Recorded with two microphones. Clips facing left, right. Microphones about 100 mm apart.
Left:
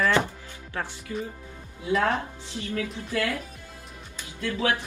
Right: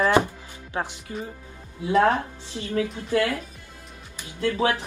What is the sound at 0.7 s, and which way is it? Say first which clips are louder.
Speech: right 4 dB; 20° right (ahead or behind).